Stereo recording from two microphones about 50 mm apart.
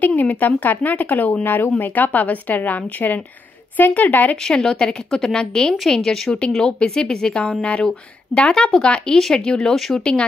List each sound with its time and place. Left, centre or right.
0.0 s speech: left
4.5 s a woman's voice: centre